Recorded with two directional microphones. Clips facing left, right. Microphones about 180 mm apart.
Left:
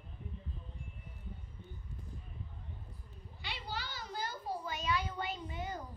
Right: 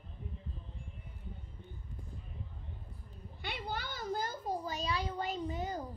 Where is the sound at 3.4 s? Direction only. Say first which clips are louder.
Right 3 dB; 55° right (ahead or behind); by 5.8 s 35° right (ahead or behind).